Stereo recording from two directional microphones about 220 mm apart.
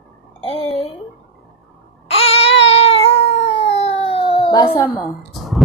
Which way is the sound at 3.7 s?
25° left (ahead or behind).